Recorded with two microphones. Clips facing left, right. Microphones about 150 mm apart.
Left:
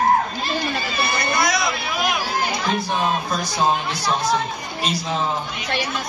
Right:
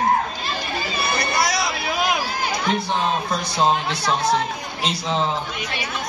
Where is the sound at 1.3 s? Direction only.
35° right (ahead or behind).